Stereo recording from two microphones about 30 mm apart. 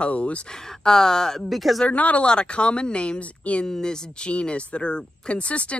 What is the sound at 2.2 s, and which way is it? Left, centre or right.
Speech, left.